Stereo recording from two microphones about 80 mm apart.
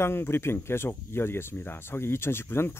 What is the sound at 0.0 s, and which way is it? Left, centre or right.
Speech, left.